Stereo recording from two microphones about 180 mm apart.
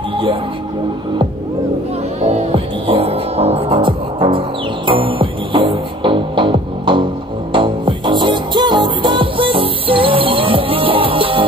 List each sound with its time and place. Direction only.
2.2 s hum: 30° right (ahead or behind)
4.8 s music: 30° right (ahead or behind)